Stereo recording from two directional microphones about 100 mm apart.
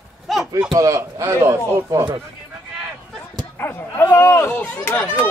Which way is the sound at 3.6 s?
20° left (ahead or behind).